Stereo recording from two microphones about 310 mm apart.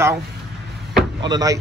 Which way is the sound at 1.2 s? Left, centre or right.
Centre.